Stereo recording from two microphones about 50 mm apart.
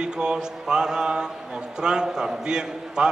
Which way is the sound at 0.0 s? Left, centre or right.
Centre.